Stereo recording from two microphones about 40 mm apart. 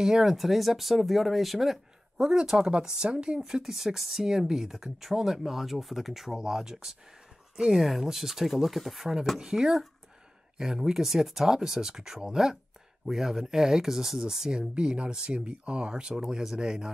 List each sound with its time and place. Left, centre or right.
0.0 s speech: centre
9.4 s speech: centre
14.7 s speech: right